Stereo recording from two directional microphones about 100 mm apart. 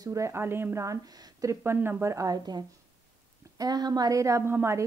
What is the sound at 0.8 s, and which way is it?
Speech, 35° right (ahead or behind).